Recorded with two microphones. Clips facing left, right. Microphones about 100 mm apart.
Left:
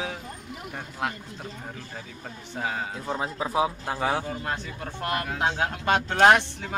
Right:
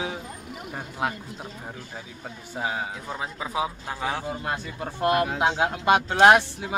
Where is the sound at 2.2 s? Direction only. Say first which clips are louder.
Right 1 dB; 10° right (ahead or behind); by 4.2 s 10° left (ahead or behind).